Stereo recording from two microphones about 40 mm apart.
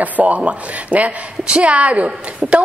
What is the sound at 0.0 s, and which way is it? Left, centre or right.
A woman's voice, right.